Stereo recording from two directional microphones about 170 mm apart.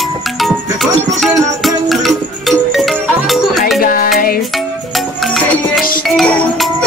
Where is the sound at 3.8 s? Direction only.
55° left (ahead or behind).